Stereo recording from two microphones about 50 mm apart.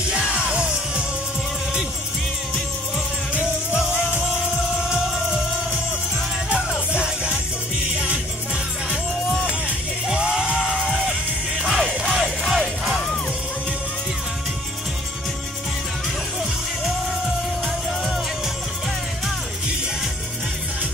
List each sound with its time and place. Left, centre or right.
0.1 s music: centre
4.8 s music: centre
6.9 s music: right
10.0 s music: centre
11.7 s music: centre